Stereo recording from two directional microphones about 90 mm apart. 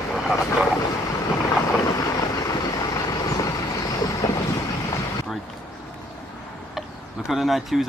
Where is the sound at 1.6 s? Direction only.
40° left (ahead or behind).